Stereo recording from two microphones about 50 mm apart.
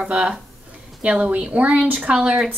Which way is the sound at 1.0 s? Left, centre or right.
Right.